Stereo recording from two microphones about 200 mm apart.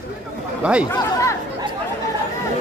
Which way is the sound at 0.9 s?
15° left (ahead or behind).